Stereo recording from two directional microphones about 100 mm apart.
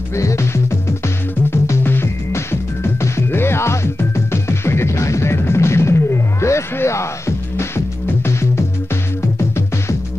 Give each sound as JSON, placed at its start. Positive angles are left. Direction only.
{"t": 0.1, "sound": "music", "side_deg": 30}